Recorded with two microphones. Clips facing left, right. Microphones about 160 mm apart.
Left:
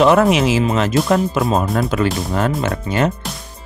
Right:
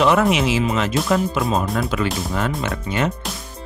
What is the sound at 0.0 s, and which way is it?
Speech, 40° left (ahead or behind).